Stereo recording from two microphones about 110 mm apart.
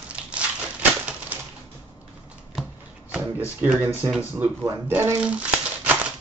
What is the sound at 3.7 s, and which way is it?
Speech, 25° right (ahead or behind).